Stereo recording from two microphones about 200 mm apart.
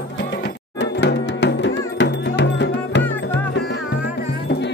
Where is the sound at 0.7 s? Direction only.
60° left (ahead or behind).